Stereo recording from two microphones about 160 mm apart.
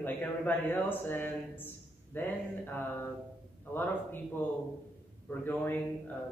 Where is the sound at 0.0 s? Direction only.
10° left (ahead or behind).